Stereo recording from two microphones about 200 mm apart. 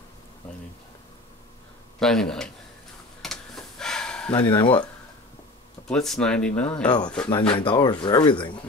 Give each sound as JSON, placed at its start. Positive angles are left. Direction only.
{"t": 2.0, "sound": "speech", "side_deg": 5}
{"t": 3.2, "sound": "a sound", "side_deg": 0}
{"t": 4.3, "sound": "speech", "side_deg": 20}
{"t": 5.9, "sound": "speech", "side_deg": 5}
{"t": 7.2, "sound": "speech", "side_deg": 25}